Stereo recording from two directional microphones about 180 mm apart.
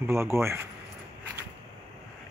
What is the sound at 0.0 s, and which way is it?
Speech, 15° right (ahead or behind).